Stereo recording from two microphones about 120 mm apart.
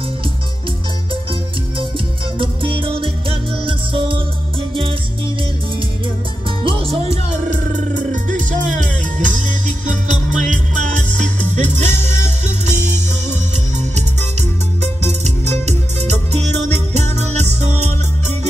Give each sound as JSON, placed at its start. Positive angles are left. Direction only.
{"t": 2.3, "sound": "music", "side_deg": -45}
{"t": 6.6, "sound": "music", "side_deg": -50}